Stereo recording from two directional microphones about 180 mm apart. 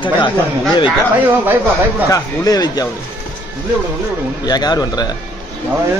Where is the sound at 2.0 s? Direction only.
20° left (ahead or behind).